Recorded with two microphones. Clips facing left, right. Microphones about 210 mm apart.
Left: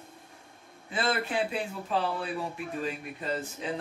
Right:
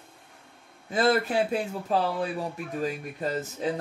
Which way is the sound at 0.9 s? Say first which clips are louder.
Right 6 dB; 40° right (ahead or behind).